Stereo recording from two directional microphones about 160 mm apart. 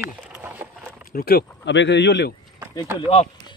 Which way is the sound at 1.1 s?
70° left (ahead or behind).